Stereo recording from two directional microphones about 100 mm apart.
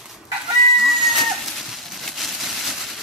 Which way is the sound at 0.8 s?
Centre (ahead or behind).